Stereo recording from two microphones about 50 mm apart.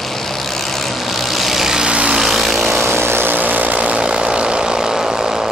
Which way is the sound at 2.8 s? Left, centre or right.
Right.